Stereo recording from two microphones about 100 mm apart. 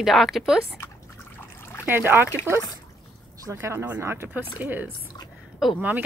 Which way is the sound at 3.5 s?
25° right (ahead or behind).